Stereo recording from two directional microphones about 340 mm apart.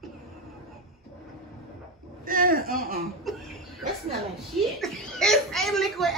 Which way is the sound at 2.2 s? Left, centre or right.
Right.